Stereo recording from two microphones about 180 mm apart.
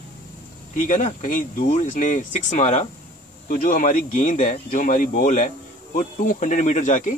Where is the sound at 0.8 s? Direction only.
45° left (ahead or behind).